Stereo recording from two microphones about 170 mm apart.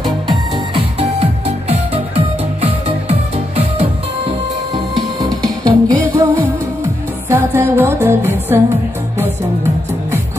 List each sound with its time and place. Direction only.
0.3 s music: 35° right (ahead or behind); by 8.7 s 15° right (ahead or behind)